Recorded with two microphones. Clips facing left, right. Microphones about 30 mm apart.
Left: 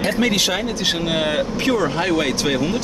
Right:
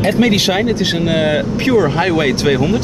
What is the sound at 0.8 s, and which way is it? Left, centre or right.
Speech, centre.